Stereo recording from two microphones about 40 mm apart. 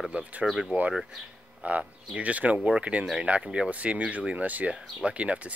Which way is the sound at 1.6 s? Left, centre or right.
Right.